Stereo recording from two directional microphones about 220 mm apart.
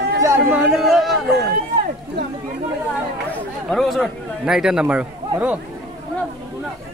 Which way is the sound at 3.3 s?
Centre (ahead or behind).